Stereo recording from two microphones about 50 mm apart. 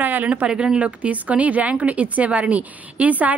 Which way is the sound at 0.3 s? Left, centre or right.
Right.